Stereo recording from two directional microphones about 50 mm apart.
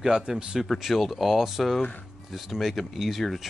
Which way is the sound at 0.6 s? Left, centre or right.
Centre.